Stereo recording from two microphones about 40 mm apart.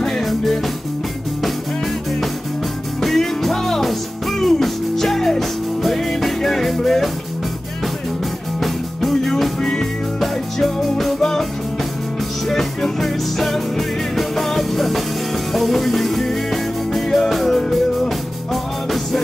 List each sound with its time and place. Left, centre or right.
0.0 s music: centre
3.0 s music: centre
8.5 s music: centre
10.2 s music: centre
12.4 s music: centre